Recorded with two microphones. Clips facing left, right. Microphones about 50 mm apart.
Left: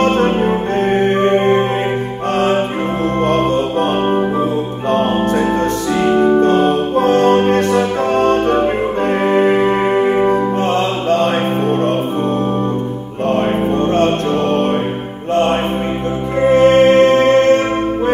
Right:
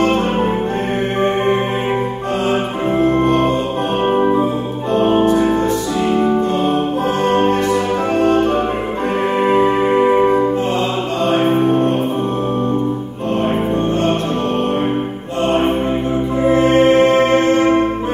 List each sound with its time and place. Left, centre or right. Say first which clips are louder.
1.2 s music: even; left
4.1 s music: right 1 dB; centre
6.0 s music: left 4 dB; left
6.4 s music: left 4 dB; left
10.0 s music: right 1 dB; centre
16.4 s music: left 3 dB; left